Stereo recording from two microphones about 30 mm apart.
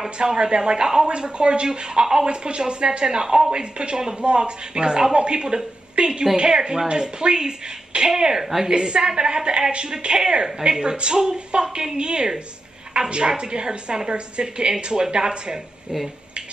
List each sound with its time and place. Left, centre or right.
0.2 s a woman's voice: right
8.4 s a woman's voice: centre
8.6 s a woman's voice: right